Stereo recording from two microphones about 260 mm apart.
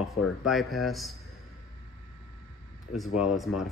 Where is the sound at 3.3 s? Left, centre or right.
Centre.